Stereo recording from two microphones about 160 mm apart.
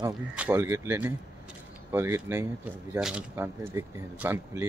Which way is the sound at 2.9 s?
5° right (ahead or behind).